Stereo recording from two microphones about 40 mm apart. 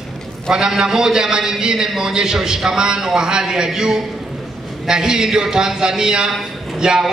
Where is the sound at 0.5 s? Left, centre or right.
Centre.